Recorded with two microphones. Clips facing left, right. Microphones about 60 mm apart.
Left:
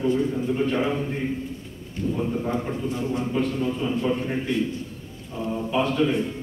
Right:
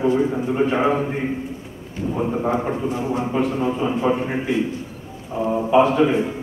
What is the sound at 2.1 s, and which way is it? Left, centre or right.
A man's voice, right.